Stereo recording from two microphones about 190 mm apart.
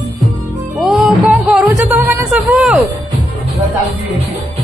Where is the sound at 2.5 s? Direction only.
Centre (ahead or behind).